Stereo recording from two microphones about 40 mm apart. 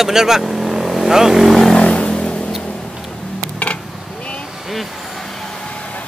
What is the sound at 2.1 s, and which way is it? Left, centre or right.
Vehicle, left.